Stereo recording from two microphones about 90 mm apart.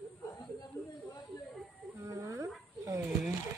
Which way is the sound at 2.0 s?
35° right (ahead or behind).